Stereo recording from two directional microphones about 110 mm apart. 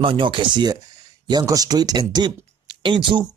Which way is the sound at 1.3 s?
35° right (ahead or behind).